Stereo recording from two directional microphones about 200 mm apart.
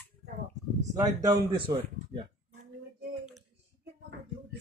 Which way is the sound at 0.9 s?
20° right (ahead or behind).